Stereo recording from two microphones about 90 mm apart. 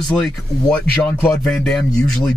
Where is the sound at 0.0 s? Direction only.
10° left (ahead or behind).